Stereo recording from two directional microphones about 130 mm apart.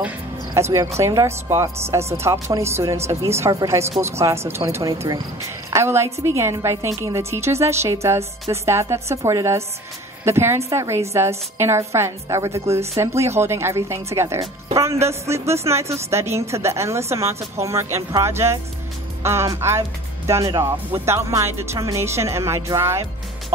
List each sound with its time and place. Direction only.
0.6 s a woman's voice: 20° right (ahead or behind)